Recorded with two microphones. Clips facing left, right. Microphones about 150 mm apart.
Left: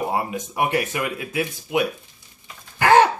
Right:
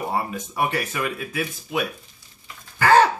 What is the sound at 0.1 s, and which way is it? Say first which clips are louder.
Speech: left 1 dB; 20° left (ahead or behind).